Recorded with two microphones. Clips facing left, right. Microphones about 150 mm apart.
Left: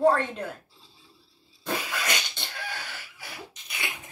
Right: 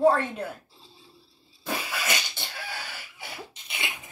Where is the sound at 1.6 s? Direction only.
5° right (ahead or behind).